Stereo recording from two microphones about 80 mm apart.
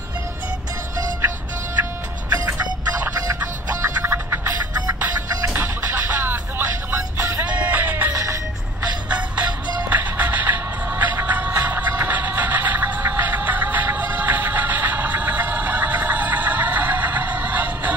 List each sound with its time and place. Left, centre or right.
2.2 s music: right
3.8 s music: right
5.5 s music: right
7.2 s music: right
7.4 s music: centre
8.1 s music: right
9.1 s music: centre